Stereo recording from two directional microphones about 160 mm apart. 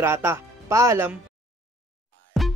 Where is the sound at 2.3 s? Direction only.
Centre (ahead or behind).